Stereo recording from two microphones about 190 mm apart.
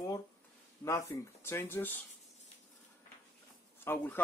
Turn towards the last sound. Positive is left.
turn(degrees=10)  # may be behind; listen again after turning